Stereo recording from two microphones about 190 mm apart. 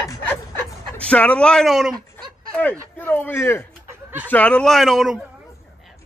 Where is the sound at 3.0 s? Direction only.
10° left (ahead or behind).